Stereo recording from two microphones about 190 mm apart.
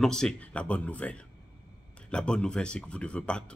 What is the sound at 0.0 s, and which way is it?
Speech, 5° left (ahead or behind).